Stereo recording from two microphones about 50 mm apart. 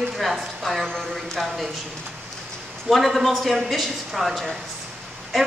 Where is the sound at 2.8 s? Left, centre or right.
Centre.